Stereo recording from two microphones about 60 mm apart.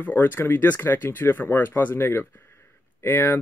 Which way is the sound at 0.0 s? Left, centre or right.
Left.